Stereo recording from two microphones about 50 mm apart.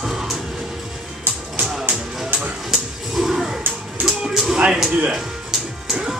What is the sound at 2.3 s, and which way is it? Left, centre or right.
Music, right.